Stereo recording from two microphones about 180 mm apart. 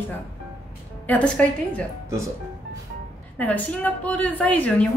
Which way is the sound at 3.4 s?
10° left (ahead or behind).